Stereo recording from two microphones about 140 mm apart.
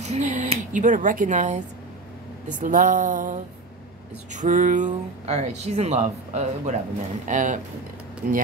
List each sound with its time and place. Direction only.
0.0 s speech: 55° right (ahead or behind)
2.4 s a sound: 70° right (ahead or behind)
4.3 s speech: 65° right (ahead or behind)
5.2 s speech: 50° right (ahead or behind)
8.2 s speech: 80° right